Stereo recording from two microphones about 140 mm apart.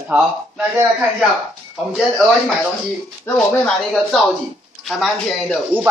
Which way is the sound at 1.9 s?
5° left (ahead or behind).